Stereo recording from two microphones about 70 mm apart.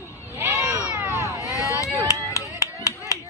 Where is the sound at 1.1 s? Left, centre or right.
Left.